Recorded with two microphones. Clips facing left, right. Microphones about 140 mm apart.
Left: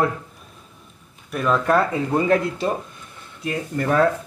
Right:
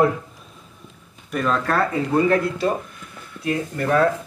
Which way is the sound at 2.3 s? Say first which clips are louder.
Even; 20° left (ahead or behind).